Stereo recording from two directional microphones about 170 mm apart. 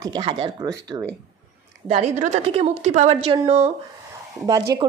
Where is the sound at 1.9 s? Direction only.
40° right (ahead or behind).